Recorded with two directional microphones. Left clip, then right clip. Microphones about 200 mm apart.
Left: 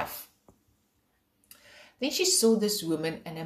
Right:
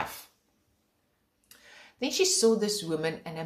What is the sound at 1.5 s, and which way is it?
Speech, centre (ahead or behind).